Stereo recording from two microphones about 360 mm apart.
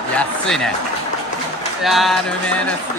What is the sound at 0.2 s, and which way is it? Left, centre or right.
Speech, centre.